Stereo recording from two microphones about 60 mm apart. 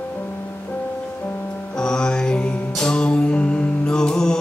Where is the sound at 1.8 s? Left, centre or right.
Centre.